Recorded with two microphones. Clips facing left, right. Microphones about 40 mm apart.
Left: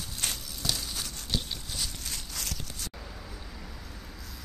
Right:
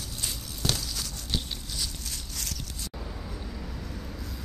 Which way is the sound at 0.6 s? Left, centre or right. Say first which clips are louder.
Right 3 dB; right.